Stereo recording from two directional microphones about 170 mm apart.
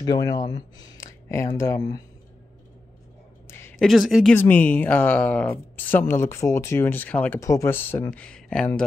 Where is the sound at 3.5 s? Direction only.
15° left (ahead or behind).